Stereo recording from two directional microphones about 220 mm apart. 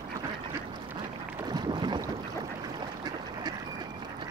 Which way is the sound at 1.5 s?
20° right (ahead or behind).